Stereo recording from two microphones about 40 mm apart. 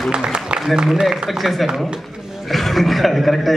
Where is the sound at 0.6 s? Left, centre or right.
Centre.